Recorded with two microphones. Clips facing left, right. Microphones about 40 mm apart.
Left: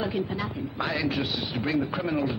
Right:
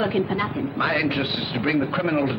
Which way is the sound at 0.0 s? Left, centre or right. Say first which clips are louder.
Right 6 dB; right.